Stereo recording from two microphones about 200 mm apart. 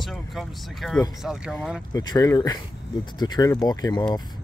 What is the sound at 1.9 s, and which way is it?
Speech, 15° left (ahead or behind).